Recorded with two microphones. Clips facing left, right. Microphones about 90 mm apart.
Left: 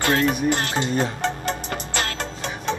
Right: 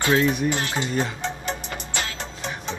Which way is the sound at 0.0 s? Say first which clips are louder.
Even; 55° left (ahead or behind).